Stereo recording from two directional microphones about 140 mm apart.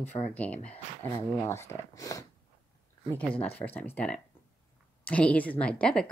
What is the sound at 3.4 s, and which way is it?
Speech, 10° left (ahead or behind).